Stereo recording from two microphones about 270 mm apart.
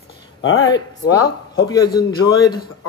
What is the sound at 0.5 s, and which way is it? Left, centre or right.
A man's voice, centre.